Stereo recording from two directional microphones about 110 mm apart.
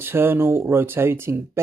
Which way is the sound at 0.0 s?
20° right (ahead or behind).